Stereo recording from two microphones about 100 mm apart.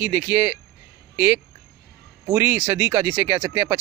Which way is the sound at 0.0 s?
20° right (ahead or behind).